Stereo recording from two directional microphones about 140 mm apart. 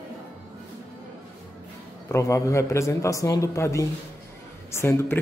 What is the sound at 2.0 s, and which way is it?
Speech, 20° left (ahead or behind).